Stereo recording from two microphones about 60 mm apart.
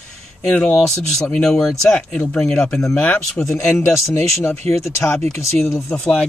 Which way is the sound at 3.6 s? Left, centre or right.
Left.